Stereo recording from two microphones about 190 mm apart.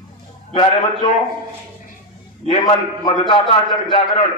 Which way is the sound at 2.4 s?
40° left (ahead or behind).